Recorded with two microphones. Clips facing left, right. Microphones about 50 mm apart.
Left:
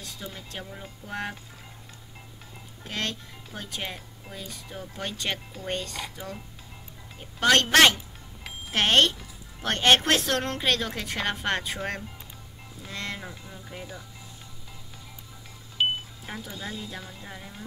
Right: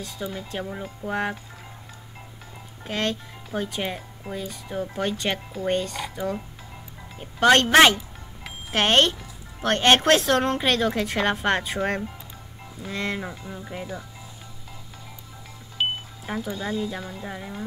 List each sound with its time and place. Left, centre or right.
0.2 s a woman's voice: centre
2.9 s a woman's voice: centre
6.1 s music: right
7.2 s a woman's voice: centre
8.5 s music: centre
9.6 s a woman's voice: centre
13.5 s music: right
15.8 s music: centre
16.3 s speech: centre
16.5 s speech: centre
17.2 s music: right